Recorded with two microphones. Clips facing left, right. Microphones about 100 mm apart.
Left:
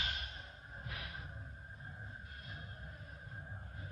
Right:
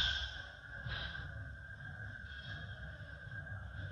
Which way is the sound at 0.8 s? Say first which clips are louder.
Right 1 dB; 25° right (ahead or behind).